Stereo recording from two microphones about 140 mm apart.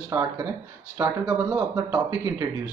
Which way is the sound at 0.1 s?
20° right (ahead or behind).